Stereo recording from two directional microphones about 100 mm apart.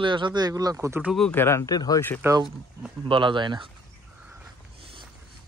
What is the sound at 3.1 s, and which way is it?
Speech, 55° right (ahead or behind).